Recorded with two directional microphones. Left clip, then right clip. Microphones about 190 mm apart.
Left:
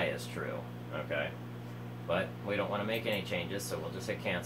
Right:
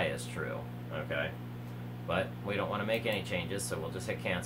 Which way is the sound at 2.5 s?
55° right (ahead or behind).